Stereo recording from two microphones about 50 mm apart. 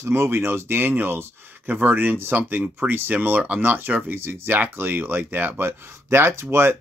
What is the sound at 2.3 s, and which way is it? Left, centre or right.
Speech, right.